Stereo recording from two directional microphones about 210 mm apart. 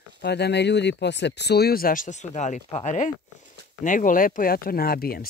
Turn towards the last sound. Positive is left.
turn(degrees=45)  # may be behind; listen again after turning